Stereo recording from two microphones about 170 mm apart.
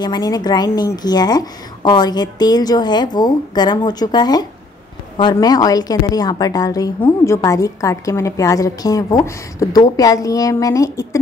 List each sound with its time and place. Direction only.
0.0 s a woman's voice: 25° left (ahead or behind)